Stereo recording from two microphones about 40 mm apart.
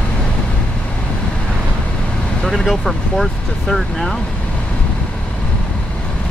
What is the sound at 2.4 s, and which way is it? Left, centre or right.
Speech, centre.